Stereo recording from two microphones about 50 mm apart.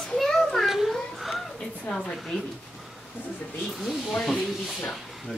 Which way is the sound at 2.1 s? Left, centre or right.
Centre.